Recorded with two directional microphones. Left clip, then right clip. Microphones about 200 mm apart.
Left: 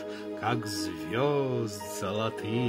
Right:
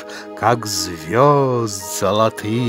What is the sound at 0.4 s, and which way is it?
Music, 55° right (ahead or behind).